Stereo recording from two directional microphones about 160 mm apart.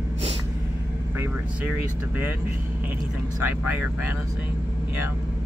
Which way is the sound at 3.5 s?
10° right (ahead or behind).